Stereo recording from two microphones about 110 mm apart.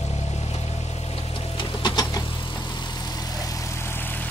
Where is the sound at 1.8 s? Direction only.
35° left (ahead or behind).